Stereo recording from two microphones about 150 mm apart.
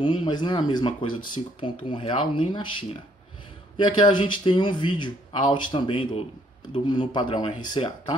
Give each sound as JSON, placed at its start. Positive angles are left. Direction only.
{"t": 0.0, "sound": "speech", "side_deg": 30}